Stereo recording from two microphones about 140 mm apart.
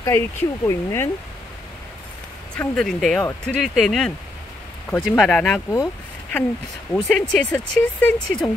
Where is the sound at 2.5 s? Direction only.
5° left (ahead or behind).